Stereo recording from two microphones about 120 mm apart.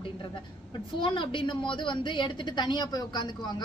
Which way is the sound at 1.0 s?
45° left (ahead or behind).